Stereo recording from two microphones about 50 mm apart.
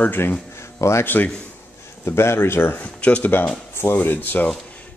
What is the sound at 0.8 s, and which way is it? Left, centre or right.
Speech, left.